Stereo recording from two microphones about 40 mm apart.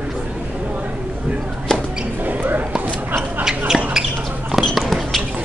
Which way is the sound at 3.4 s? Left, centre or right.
Centre.